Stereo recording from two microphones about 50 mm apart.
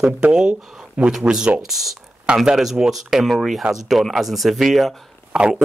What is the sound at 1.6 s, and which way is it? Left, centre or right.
Speech, centre.